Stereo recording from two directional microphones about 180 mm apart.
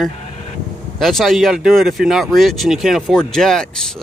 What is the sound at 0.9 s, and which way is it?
Speech, centre (ahead or behind).